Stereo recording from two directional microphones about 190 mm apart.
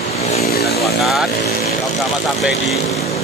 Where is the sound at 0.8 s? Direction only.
Centre (ahead or behind).